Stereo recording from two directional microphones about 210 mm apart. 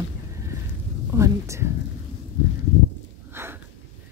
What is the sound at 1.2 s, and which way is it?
Speech, 15° right (ahead or behind).